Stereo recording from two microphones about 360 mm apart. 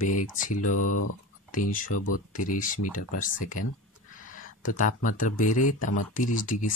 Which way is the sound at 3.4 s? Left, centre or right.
Left.